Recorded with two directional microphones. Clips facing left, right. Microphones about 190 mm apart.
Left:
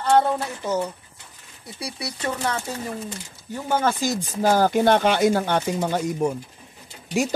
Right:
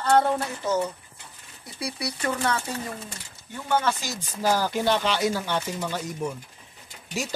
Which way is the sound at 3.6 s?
40° left (ahead or behind).